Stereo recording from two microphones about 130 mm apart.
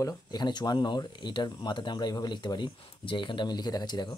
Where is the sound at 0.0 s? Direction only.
35° left (ahead or behind).